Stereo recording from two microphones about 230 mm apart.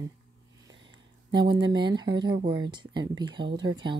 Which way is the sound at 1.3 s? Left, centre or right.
Centre.